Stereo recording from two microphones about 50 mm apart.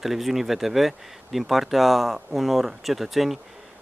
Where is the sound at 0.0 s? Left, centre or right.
Centre.